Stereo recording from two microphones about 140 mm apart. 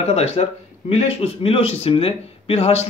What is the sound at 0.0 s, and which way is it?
Speech, 50° left (ahead or behind).